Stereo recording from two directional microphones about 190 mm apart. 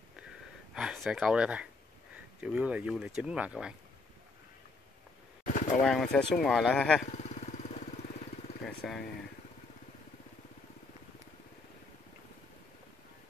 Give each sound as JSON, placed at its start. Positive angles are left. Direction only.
{"t": 0.7, "sound": "speech", "side_deg": 0}
{"t": 5.4, "sound": "a sound", "side_deg": 45}
{"t": 5.8, "sound": "speech", "side_deg": 5}
{"t": 7.1, "sound": "vehicle", "side_deg": 40}
{"t": 8.6, "sound": "speech", "side_deg": 0}